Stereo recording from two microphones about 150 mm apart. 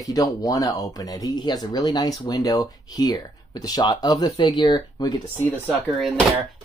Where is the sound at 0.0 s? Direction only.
25° left (ahead or behind).